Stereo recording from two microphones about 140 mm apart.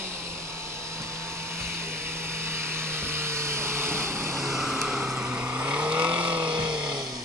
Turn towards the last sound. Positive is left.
turn(degrees=-5)  # may be behind; listen again after turning